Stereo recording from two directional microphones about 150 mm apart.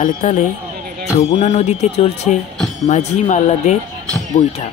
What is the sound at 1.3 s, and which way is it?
Speech, 50° left (ahead or behind).